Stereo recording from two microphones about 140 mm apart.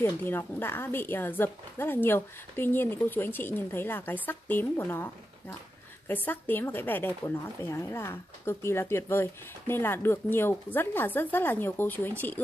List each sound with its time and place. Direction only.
0.0 s speech: 15° left (ahead or behind)